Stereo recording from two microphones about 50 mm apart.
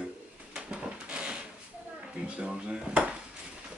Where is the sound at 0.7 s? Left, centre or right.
Centre.